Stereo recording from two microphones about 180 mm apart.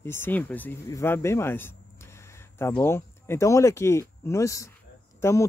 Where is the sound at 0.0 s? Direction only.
15° left (ahead or behind).